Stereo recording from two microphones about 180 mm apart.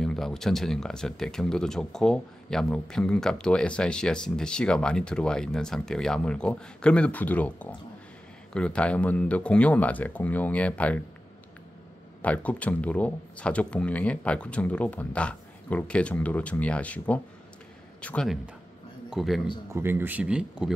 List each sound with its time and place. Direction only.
0.0 s speech: centre (ahead or behind)
12.2 s speech: 10° left (ahead or behind)
19.7 s speech: 10° right (ahead or behind)